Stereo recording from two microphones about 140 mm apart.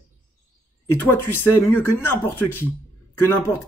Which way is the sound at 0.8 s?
15° left (ahead or behind).